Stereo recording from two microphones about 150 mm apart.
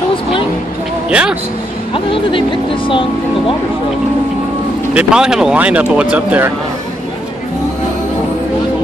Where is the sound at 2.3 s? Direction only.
35° left (ahead or behind).